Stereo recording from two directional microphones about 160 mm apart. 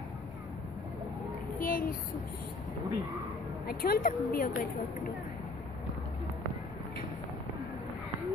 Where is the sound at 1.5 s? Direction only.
60° left (ahead or behind).